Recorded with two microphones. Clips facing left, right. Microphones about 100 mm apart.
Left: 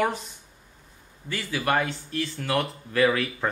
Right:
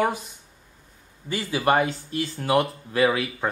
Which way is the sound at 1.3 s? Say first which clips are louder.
Right 4 dB; 20° right (ahead or behind).